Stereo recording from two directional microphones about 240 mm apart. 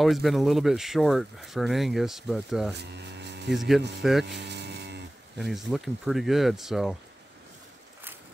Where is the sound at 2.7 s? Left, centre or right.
Right.